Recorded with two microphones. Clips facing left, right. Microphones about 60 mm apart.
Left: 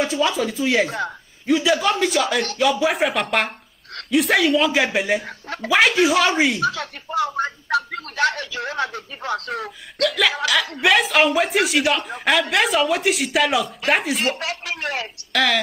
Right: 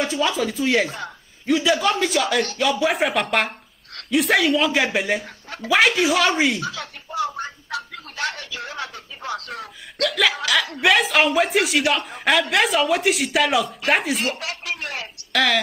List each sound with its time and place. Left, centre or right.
0.0 s speech: centre
0.8 s speech: left
1.4 s speech: centre
5.2 s speech: left
5.9 s speech: centre
6.6 s speech: left
9.9 s speech: centre
14.4 s speech: left
15.3 s speech: centre